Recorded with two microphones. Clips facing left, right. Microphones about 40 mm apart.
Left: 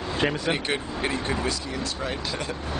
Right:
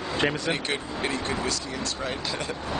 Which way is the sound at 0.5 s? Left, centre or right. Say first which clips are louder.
Left 2 dB; centre.